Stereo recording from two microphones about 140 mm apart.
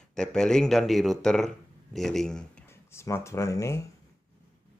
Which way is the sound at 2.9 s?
20° left (ahead or behind).